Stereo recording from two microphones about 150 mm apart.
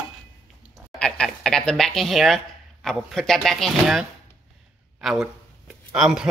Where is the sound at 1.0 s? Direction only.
5° left (ahead or behind).